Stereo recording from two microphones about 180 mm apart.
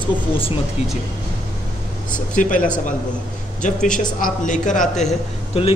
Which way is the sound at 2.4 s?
45° left (ahead or behind).